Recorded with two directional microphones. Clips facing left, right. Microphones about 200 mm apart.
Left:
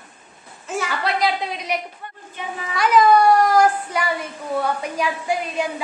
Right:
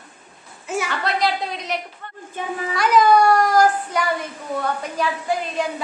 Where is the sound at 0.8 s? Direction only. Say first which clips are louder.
Left 1 dB; 5° left (ahead or behind).